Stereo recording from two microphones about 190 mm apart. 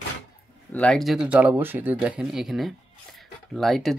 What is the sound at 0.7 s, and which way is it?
Speech, 5° left (ahead or behind).